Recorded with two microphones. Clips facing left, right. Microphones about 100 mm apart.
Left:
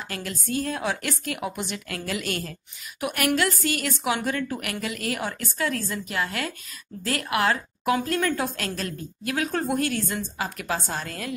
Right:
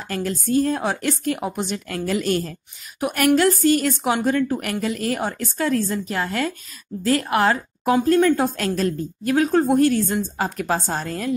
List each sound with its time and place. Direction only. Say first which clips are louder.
0.1 s a woman's voice: right 9 dB; 35° right (ahead or behind)